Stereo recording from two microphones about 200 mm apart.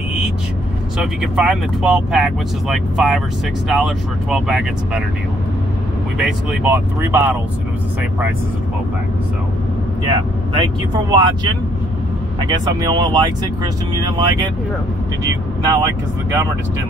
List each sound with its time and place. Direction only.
0.9 s speech: 5° right (ahead or behind)
6.1 s speech: 5° right (ahead or behind)
10.0 s speech: 25° right (ahead or behind)
12.8 s speech: 20° right (ahead or behind)
15.6 s speech: 15° right (ahead or behind)